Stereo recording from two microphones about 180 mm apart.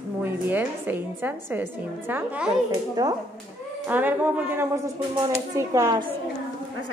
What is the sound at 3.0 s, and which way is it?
Speech, 20° right (ahead or behind).